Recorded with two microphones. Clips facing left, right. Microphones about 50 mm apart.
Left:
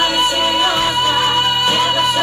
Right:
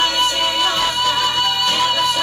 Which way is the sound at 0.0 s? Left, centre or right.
Centre.